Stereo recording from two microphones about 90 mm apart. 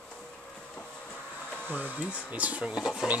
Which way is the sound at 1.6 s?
20° right (ahead or behind).